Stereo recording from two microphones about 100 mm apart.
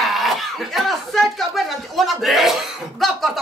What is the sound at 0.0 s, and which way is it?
A man's voice, centre (ahead or behind).